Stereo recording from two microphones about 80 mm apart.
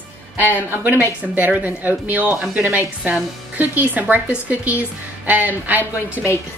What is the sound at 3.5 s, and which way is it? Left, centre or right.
A woman's voice, right.